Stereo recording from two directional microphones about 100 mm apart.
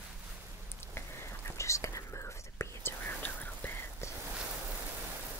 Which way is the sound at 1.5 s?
30° left (ahead or behind).